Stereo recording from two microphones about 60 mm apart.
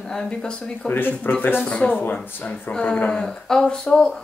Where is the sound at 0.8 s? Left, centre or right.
Left.